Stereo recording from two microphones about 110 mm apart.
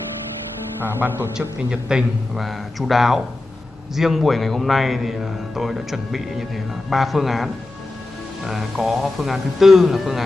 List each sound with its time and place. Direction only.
1.0 s a man's voice: 20° right (ahead or behind)
1.7 s a man's voice: 5° right (ahead or behind)